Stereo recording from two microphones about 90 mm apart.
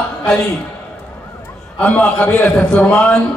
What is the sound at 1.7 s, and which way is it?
A man's voice, 15° left (ahead or behind).